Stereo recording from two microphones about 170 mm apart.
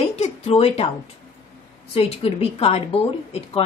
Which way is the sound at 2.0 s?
35° left (ahead or behind).